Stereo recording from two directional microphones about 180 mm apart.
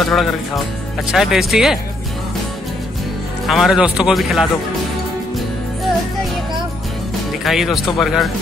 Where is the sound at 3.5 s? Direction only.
Centre (ahead or behind).